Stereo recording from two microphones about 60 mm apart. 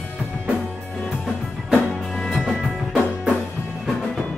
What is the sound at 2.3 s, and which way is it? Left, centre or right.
Music, centre.